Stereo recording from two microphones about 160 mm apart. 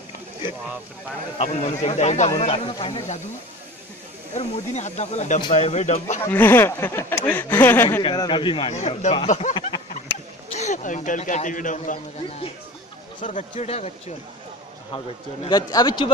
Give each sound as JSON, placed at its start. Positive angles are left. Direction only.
{"t": 1.4, "sound": "speech", "side_deg": 40}
{"t": 4.4, "sound": "speech", "side_deg": 45}
{"t": 6.2, "sound": "speech", "side_deg": 15}
{"t": 8.0, "sound": "speech", "side_deg": 30}
{"t": 8.7, "sound": "speech", "side_deg": 45}
{"t": 9.5, "sound": "a sound", "side_deg": 35}
{"t": 10.5, "sound": "speech", "side_deg": 45}
{"t": 13.2, "sound": "speech", "side_deg": 50}
{"t": 15.4, "sound": "speech", "side_deg": 25}